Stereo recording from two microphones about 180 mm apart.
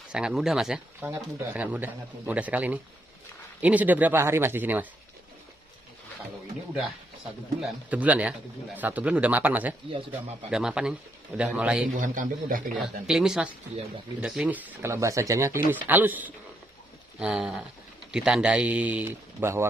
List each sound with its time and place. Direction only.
0.1 s speech: 5° right (ahead or behind)
7.9 s speech: 10° right (ahead or behind)
12.0 s a man's voice: 45° right (ahead or behind)
12.7 s speech: centre (ahead or behind)